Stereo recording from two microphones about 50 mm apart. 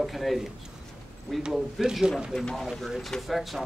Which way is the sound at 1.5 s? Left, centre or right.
Centre.